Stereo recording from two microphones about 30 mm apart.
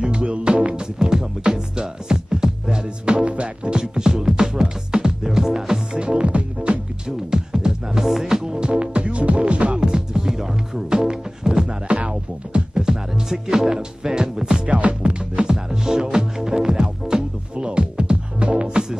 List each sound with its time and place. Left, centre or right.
0.0 s music: right
0.9 s music: right
2.8 s music: right
3.9 s music: right
5.9 s music: right
7.1 s music: centre
8.5 s music: right
9.8 s music: right
11.6 s music: right
12.8 s music: centre
14.7 s music: right
15.4 s music: right